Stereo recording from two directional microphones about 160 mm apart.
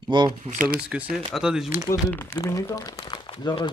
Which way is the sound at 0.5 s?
55° right (ahead or behind).